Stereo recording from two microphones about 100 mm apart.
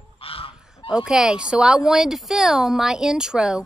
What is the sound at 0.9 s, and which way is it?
A woman's voice, 5° right (ahead or behind).